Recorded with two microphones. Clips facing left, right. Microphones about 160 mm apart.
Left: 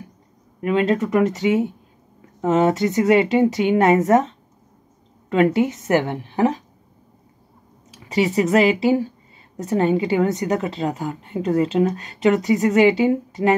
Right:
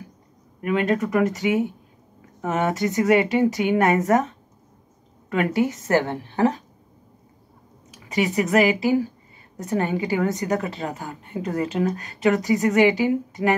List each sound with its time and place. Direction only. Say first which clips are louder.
0.6 s a woman's voice: left 3 dB; 25° left (ahead or behind)
7.9 s a woman's voice: left 3 dB; 25° left (ahead or behind)